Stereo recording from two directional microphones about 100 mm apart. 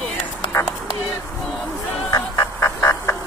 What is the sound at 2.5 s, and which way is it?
Music, 30° left (ahead or behind).